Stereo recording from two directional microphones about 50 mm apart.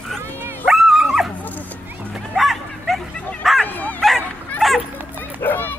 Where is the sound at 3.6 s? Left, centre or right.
Left.